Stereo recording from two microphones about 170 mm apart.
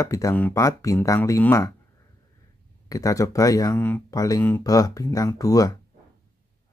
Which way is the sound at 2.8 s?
20° left (ahead or behind).